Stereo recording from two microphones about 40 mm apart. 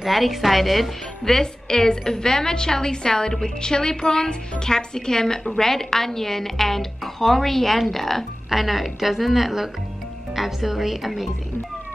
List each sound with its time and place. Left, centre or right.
0.0 s a woman's voice: centre
1.2 s a woman's voice: centre